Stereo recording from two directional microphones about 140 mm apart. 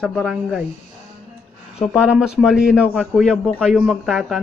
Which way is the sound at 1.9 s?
5° right (ahead or behind).